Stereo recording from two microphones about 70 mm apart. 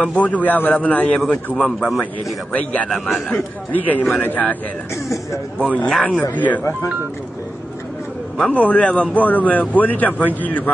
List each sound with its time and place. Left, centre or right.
0.1 s a man's voice: left
1.8 s a man's voice: centre
2.5 s a man's voice: left
2.9 s a man's voice: centre
3.7 s a man's voice: left
5.0 s speech: left
5.9 s a man's voice: centre
8.4 s a man's voice: centre